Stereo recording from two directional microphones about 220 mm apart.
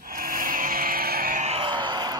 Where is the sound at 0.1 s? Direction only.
40° right (ahead or behind).